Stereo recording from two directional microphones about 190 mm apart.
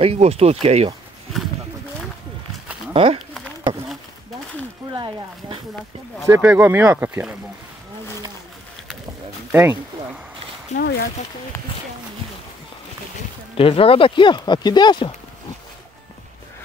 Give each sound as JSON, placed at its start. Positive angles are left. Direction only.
{"t": 0.0, "sound": "speech", "side_deg": -30}
{"t": 2.9, "sound": "speech", "side_deg": -25}
{"t": 4.9, "sound": "speech", "side_deg": -25}
{"t": 6.2, "sound": "speech", "side_deg": -10}
{"t": 9.5, "sound": "speech", "side_deg": -10}
{"t": 10.8, "sound": "speech", "side_deg": 60}
{"t": 13.6, "sound": "speech", "side_deg": 30}